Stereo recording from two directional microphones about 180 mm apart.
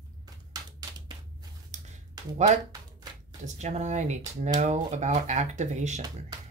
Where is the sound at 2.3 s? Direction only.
40° right (ahead or behind).